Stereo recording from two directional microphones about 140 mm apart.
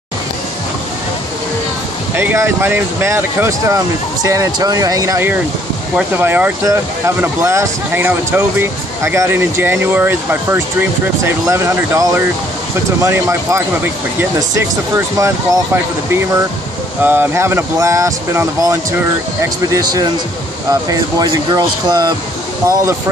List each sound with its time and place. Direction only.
2.1 s speech: 15° right (ahead or behind)
15.1 s speech: 20° right (ahead or behind)